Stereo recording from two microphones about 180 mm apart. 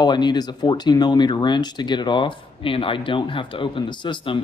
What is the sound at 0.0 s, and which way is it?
Speech, 25° left (ahead or behind).